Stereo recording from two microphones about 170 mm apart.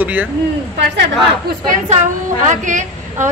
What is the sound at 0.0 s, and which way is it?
Speech, 10° right (ahead or behind).